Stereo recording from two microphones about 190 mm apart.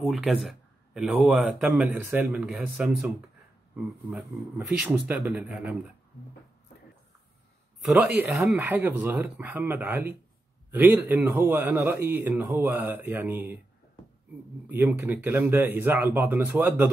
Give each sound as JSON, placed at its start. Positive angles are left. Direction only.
{"t": 0.0, "sound": "speech", "side_deg": 0}
{"t": 7.8, "sound": "a man's voice", "side_deg": -5}
{"t": 14.7, "sound": "a man's voice", "side_deg": -10}